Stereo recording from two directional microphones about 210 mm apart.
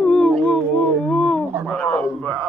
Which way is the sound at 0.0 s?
5° left (ahead or behind).